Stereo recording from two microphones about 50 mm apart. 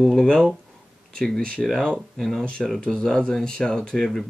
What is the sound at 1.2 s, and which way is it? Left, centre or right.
Speech, centre.